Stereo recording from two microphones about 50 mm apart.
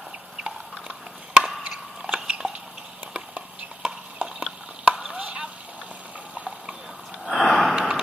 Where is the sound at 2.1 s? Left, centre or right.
Right.